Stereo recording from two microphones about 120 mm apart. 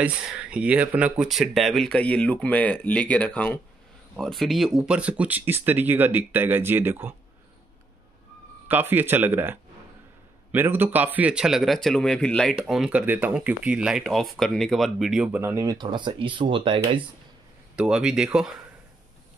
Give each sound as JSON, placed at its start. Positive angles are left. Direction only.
{"t": 0.0, "sound": "speech", "side_deg": -10}
{"t": 4.2, "sound": "speech", "side_deg": 0}
{"t": 8.6, "sound": "speech", "side_deg": -15}
{"t": 12.5, "sound": "speech", "side_deg": -5}
{"t": 15.5, "sound": "speech", "side_deg": -30}
{"t": 17.7, "sound": "speech", "side_deg": -5}